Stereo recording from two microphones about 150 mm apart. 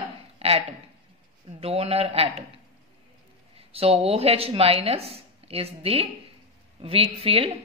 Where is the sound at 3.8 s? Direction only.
40° right (ahead or behind).